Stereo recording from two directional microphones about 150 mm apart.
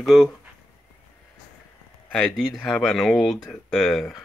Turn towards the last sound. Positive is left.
turn(degrees=0)  # may be behind; listen again after turning